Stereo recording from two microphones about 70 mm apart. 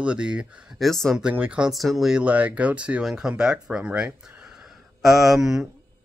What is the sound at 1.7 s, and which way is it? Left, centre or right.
Speech, centre.